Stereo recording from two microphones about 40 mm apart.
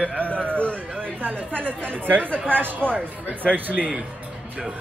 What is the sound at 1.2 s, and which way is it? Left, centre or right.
Speech, right.